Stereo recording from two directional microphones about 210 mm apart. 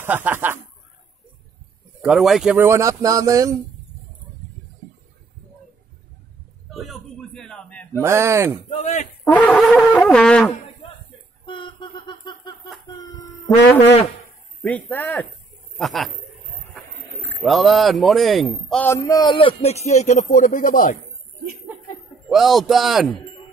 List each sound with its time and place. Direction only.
0.0 s speech: 10° right (ahead or behind)
2.0 s speech: centre (ahead or behind); by 3.5 s 15° right (ahead or behind)
6.7 s a sound: centre (ahead or behind)
8.0 s speech: 15° right (ahead or behind)
8.6 s speech: 30° left (ahead or behind)
9.2 s wind instrument: 5° left (ahead or behind)
11.4 s a sound: 25° left (ahead or behind)
14.6 s speech: 5° left (ahead or behind)
15.8 s wind instrument: centre (ahead or behind)
17.4 s a man's voice: centre (ahead or behind); by 21.0 s 40° left (ahead or behind)
22.3 s wind instrument: centre (ahead or behind)